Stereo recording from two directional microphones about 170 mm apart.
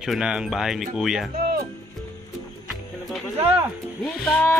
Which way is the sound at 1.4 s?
65° right (ahead or behind).